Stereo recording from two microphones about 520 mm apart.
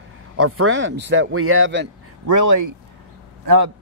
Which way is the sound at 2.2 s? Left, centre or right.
Right.